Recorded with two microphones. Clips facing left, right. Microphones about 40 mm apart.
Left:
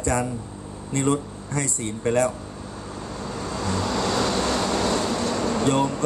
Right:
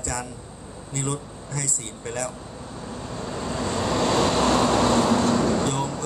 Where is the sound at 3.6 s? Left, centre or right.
Right.